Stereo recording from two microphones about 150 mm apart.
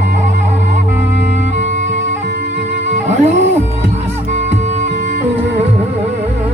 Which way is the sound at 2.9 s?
50° right (ahead or behind).